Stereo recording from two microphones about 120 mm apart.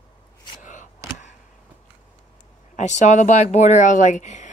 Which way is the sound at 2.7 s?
80° left.